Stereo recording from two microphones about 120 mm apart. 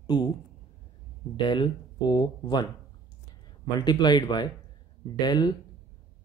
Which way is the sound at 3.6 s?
35° left (ahead or behind).